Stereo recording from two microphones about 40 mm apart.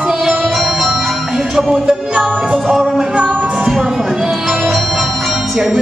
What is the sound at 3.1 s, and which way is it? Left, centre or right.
Music, right.